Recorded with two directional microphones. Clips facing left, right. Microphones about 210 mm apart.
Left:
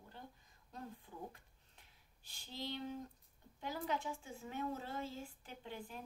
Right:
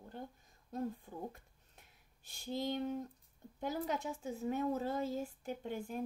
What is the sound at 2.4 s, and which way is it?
Speech, 45° right (ahead or behind).